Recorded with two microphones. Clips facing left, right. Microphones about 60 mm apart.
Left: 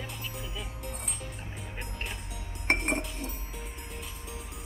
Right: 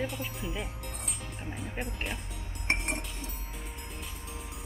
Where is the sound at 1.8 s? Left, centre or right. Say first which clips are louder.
Right 2 dB; centre.